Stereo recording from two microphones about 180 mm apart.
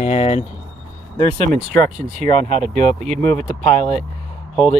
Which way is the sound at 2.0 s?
40° right (ahead or behind).